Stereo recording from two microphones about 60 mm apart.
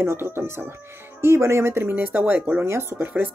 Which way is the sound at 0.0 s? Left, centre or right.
Right.